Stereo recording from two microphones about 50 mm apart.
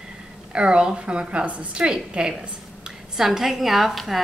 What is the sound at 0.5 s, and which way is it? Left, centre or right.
A woman's voice, right.